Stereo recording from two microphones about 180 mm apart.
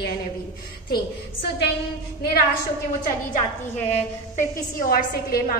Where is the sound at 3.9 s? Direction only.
45° left (ahead or behind).